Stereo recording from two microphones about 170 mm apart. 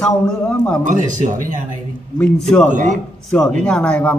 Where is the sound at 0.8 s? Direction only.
50° right (ahead or behind).